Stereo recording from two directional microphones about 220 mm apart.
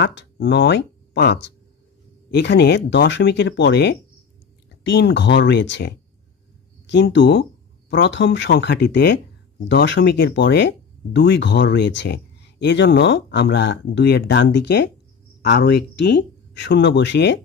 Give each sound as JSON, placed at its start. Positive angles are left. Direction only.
{"t": 0.0, "sound": "speech", "side_deg": 50}